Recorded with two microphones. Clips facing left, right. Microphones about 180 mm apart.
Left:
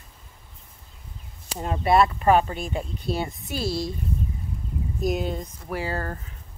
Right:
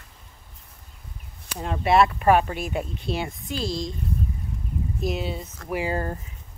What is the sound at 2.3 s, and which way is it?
Speech, 25° left (ahead or behind).